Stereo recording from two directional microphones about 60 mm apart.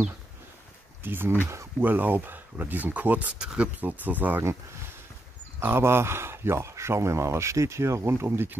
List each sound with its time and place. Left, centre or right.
1.0 s speech: right
3.3 s speech: centre
3.6 s speech: right
5.6 s speech: right